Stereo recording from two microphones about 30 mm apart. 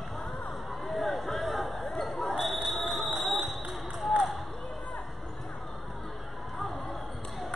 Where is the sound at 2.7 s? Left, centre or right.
Centre.